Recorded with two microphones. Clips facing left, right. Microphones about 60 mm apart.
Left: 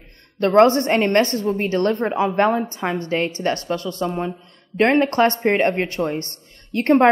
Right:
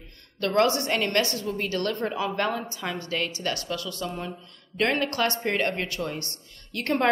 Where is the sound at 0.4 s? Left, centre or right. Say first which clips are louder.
Left 9 dB; left.